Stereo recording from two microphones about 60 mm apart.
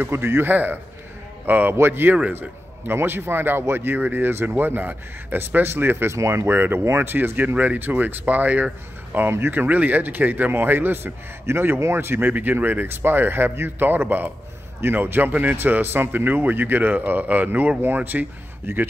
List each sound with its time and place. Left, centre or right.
0.0 s speech: right
9.3 s speech: right
18.7 s speech: right